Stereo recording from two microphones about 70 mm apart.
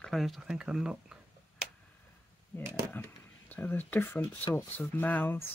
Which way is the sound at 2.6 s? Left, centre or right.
Right.